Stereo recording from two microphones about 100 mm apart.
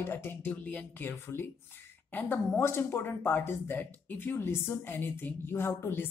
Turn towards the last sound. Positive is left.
turn(degrees=20)  # may be behind; listen again after turning